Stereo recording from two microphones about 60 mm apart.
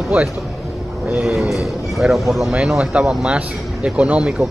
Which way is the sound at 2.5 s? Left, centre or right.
Centre.